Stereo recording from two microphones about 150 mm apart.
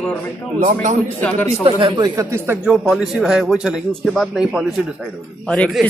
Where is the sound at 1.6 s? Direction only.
35° right (ahead or behind).